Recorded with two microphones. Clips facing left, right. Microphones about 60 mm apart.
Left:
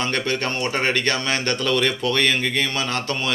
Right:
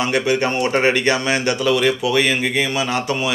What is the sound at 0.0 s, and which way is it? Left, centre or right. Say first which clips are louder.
Speech: right 5 dB; centre.